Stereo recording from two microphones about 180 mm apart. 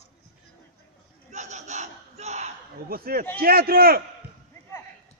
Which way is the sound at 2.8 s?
55° right (ahead or behind).